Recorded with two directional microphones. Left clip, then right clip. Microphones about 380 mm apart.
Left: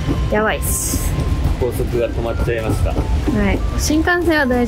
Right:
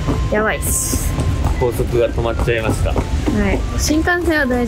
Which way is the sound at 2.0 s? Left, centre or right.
Right.